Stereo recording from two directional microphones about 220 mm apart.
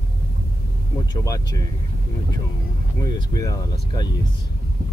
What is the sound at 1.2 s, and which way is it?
Speech, 15° left (ahead or behind).